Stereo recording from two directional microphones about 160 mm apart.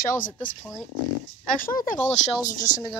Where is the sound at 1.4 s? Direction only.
60° left (ahead or behind).